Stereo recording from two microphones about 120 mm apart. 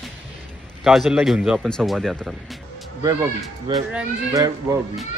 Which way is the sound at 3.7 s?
40° right (ahead or behind).